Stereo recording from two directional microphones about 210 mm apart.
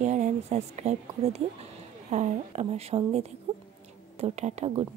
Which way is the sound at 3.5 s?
30° right (ahead or behind).